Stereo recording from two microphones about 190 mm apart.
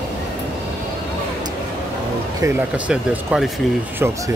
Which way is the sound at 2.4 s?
15° right (ahead or behind).